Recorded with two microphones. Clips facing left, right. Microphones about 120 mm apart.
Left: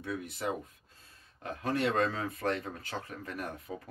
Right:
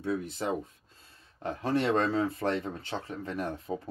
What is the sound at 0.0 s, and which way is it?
Speech, 30° right (ahead or behind).